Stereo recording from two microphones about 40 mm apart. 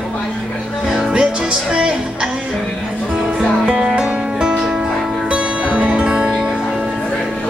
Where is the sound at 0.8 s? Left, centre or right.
Centre.